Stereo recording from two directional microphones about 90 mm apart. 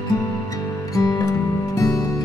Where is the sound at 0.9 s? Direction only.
40° left (ahead or behind).